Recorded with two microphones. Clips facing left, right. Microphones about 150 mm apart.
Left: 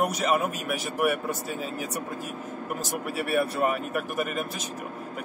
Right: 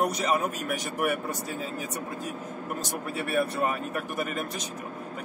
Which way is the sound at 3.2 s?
5° left (ahead or behind).